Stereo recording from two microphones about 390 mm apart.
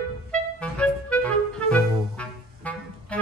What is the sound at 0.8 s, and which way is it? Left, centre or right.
Music, centre.